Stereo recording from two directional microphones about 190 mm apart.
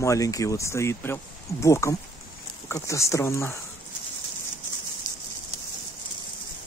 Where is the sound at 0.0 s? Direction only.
15° left (ahead or behind).